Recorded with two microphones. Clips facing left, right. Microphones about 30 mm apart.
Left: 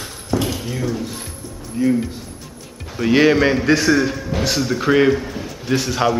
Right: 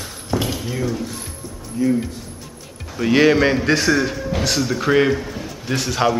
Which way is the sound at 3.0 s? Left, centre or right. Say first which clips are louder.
Even; centre.